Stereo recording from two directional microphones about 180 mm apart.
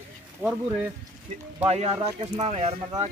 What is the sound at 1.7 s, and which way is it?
Speech, 35° right (ahead or behind).